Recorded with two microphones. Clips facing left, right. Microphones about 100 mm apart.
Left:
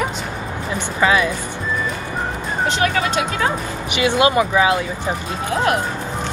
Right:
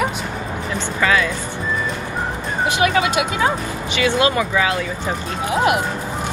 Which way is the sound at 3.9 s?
20° left (ahead or behind).